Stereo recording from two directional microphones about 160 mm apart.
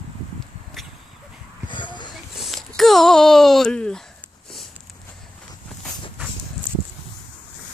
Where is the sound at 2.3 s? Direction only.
Centre (ahead or behind).